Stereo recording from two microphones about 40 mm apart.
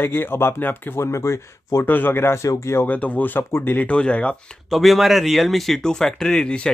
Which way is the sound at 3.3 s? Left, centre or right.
Left.